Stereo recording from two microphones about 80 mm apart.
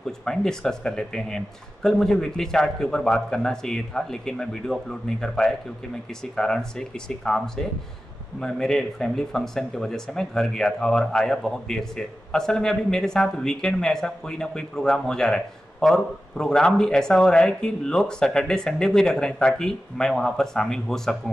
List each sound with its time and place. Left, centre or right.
0.0 s speech: centre